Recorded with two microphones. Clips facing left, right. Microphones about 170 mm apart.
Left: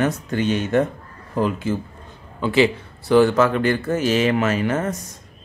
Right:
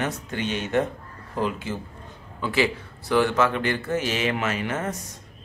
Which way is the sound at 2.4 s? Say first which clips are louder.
Left 6 dB; 25° left (ahead or behind).